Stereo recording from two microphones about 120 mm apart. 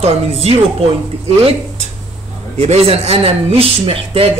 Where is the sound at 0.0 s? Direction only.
55° right (ahead or behind).